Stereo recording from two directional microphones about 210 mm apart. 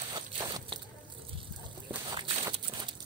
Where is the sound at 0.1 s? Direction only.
20° right (ahead or behind).